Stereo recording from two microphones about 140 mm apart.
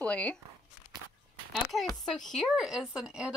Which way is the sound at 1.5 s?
Centre (ahead or behind).